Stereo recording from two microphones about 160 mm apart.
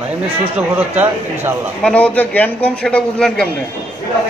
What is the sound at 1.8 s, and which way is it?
A man's voice, 10° left (ahead or behind).